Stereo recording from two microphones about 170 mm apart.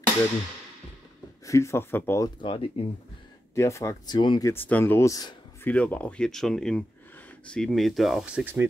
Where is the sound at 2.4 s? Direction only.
35° left (ahead or behind).